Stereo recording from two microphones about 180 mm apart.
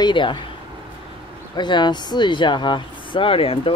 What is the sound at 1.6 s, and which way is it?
Speech, 25° left (ahead or behind).